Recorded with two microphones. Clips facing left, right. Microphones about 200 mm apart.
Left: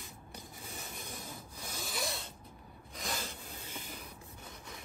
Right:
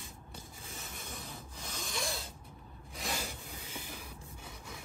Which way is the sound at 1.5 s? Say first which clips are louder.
Right 1 dB; 5° left (ahead or behind).